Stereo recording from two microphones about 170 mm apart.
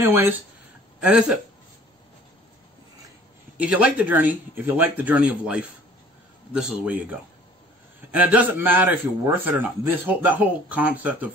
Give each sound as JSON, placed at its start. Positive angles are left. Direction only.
{"t": 0.0, "sound": "a man's voice", "side_deg": -15}
{"t": 3.5, "sound": "a man's voice", "side_deg": -5}